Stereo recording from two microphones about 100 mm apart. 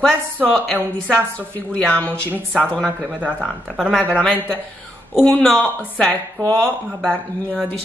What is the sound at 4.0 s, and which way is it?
A woman's voice, 10° left (ahead or behind).